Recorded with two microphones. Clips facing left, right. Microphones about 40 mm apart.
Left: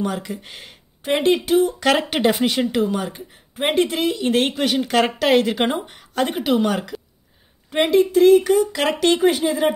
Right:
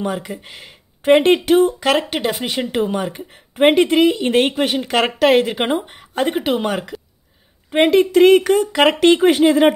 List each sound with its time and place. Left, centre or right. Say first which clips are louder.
0.0 s speech: right 1 dB; centre
1.0 s speech: right 6 dB; right
2.0 s speech: left 1 dB; centre
2.4 s speech: left 3 dB; centre
2.7 s speech: right 1 dB; right
3.3 s speech: right 6 dB; right
4.6 s speech: even; right
7.8 s speech: right 3 dB; right